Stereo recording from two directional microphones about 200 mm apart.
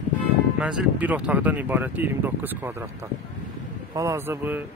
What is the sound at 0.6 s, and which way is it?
Speech, 5° right (ahead or behind).